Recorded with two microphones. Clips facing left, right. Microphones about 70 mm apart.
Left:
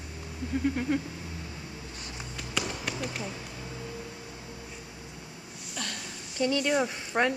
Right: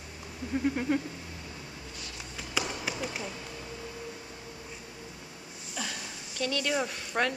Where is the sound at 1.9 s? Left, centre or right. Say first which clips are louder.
Left 2 dB; left.